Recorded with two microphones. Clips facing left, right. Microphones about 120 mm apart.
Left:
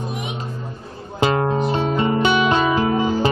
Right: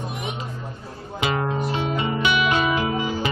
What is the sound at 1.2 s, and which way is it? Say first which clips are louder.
Music: left 6 dB; 35° left (ahead or behind).